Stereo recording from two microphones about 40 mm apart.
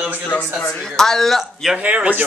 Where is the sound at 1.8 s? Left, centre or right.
Right.